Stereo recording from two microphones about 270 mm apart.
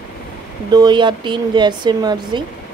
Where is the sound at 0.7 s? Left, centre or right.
Centre.